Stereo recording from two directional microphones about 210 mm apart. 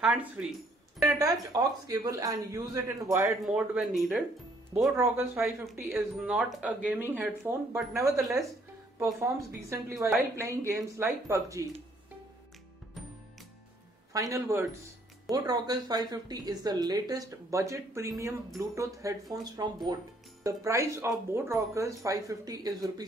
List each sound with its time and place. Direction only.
0.0 s a sound: 5° right (ahead or behind)
1.1 s a woman's voice: 15° right (ahead or behind)
3.3 s speech: 5° right (ahead or behind)
4.9 s a woman's voice: 10° right (ahead or behind)
14.1 s a woman's voice: 15° right (ahead or behind)